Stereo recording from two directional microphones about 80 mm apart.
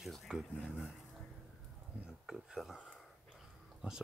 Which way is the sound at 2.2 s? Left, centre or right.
Centre.